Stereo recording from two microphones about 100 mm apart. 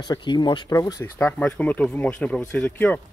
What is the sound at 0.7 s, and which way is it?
Speech, 35° left (ahead or behind).